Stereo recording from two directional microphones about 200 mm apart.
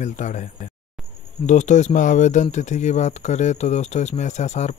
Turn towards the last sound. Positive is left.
turn(degrees=35)  # may be behind; listen again after turning